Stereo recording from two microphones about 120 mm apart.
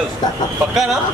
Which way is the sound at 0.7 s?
5° right (ahead or behind).